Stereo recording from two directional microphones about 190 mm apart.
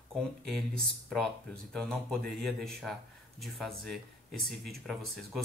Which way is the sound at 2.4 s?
Centre (ahead or behind).